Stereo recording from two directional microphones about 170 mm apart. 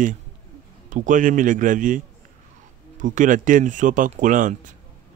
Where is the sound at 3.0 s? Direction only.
50° right (ahead or behind).